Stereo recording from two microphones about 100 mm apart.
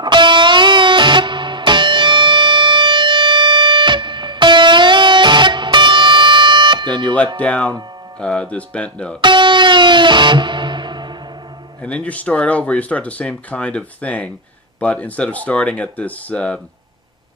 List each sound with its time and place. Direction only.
0.0 s music: 50° right (ahead or behind)
7.3 s speech: 15° left (ahead or behind)
9.2 s music: 55° right (ahead or behind)
11.8 s speech: 15° left (ahead or behind)